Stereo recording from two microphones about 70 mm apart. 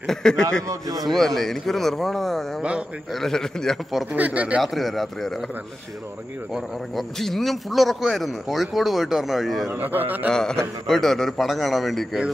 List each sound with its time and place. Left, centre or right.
0.0 s speech: centre
0.7 s a man's voice: right
1.0 s a man's voice: centre
4.1 s a man's voice: right
4.6 s a man's voice: centre
6.5 s a man's voice: centre
9.7 s a man's voice: right
10.3 s a man's voice: centre